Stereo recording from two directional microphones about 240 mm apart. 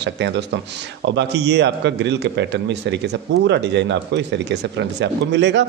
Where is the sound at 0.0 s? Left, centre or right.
Right.